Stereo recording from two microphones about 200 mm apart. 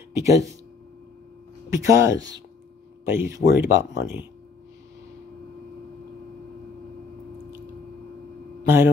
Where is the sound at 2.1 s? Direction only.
20° right (ahead or behind).